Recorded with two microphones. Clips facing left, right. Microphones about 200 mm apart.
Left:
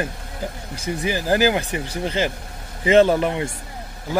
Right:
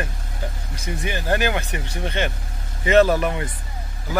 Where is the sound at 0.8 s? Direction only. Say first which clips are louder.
Left 4 dB; 30° left (ahead or behind).